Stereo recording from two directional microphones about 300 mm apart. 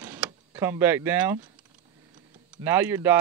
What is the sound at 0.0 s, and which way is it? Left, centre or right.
Power windows, centre.